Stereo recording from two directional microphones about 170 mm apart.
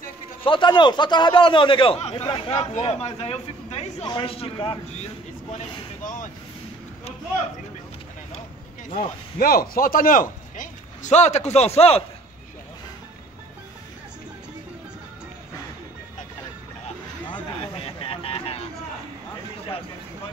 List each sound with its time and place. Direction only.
0.4 s a man's voice: 30° left (ahead or behind)
5.5 s boat: 45° left (ahead or behind)
8.9 s speech: 60° left (ahead or behind); by 12.0 s 35° left (ahead or behind)
17.3 s a sound: 35° left (ahead or behind)